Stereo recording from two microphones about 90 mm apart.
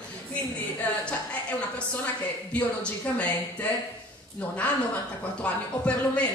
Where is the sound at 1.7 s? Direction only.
15° left (ahead or behind).